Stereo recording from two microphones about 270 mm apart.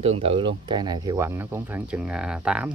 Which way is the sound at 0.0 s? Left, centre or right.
Right.